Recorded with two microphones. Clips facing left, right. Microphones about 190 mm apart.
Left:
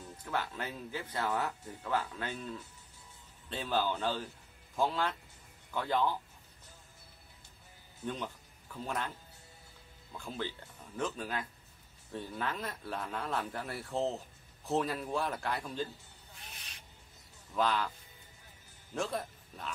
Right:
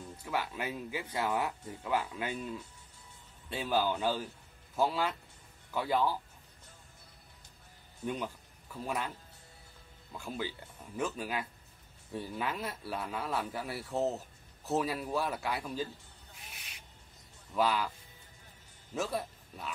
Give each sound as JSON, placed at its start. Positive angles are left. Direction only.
{"t": 0.2, "sound": "speech", "side_deg": -10}
{"t": 8.0, "sound": "a man's voice", "side_deg": -10}
{"t": 10.1, "sound": "a man's voice", "side_deg": -10}
{"t": 17.6, "sound": "speech", "side_deg": -10}
{"t": 18.9, "sound": "a man's voice", "side_deg": -5}